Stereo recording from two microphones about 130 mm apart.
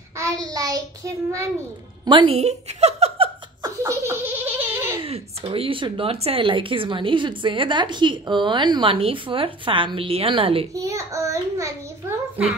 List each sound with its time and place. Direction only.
0.5 s a child's voice: 25° right (ahead or behind)
2.0 s a woman's voice: 45° right (ahead or behind)
3.6 s laughter: 20° right (ahead or behind)
5.0 s speech: 45° right (ahead or behind)
10.7 s a child's voice: 25° right (ahead or behind)